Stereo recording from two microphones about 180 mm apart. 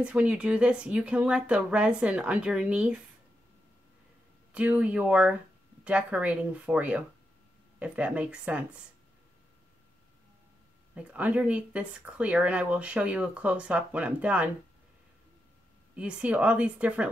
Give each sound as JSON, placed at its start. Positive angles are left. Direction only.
{"t": 0.0, "sound": "speech", "side_deg": -5}
{"t": 4.5, "sound": "speech", "side_deg": -5}
{"t": 11.0, "sound": "speech", "side_deg": -5}
{"t": 16.0, "sound": "speech", "side_deg": -5}